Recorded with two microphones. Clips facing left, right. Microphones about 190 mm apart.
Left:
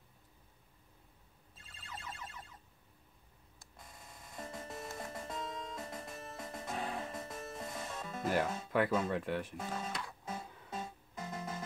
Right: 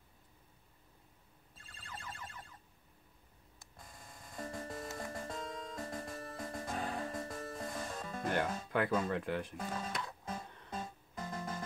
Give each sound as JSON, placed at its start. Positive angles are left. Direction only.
{"t": 4.4, "sound": "music", "side_deg": 25}
{"t": 5.3, "sound": "music", "side_deg": -50}
{"t": 5.8, "sound": "music", "side_deg": 25}
{"t": 8.2, "sound": "speech", "side_deg": 5}
{"t": 10.3, "sound": "music", "side_deg": 5}
{"t": 10.8, "sound": "music", "side_deg": 25}